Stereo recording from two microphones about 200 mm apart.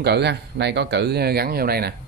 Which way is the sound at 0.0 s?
55° right (ahead or behind).